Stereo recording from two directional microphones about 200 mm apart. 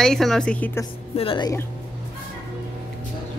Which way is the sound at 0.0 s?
Centre (ahead or behind).